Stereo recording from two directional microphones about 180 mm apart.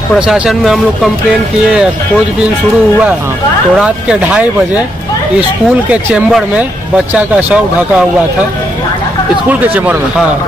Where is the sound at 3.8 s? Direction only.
5° right (ahead or behind).